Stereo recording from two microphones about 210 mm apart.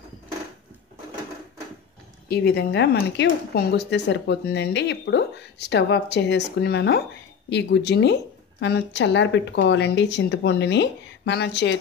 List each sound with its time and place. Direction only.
2.2 s a woman's voice: 50° left (ahead or behind)